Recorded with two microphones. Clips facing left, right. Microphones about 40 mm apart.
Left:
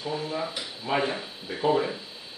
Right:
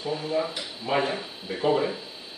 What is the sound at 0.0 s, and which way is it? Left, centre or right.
Speech, centre.